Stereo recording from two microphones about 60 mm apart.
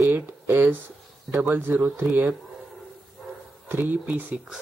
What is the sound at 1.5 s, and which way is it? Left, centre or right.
Speech, right.